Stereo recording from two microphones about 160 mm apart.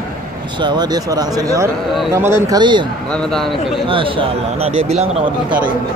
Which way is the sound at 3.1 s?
5° left (ahead or behind).